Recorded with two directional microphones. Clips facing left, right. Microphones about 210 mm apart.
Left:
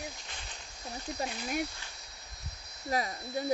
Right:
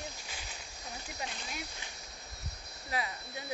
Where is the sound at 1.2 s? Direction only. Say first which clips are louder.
Left 10 dB; 50° left (ahead or behind).